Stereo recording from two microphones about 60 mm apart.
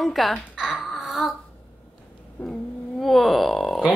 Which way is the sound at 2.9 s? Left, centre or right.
Centre.